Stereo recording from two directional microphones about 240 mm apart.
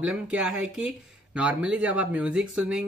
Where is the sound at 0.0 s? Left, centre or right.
Centre.